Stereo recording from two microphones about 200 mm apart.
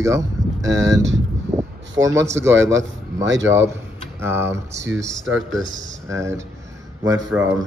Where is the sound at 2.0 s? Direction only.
15° right (ahead or behind).